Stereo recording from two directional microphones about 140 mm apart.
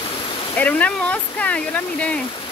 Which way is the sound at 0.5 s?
10° left (ahead or behind).